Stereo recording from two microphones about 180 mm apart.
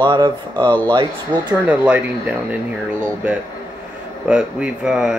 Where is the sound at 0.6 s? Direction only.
10° left (ahead or behind).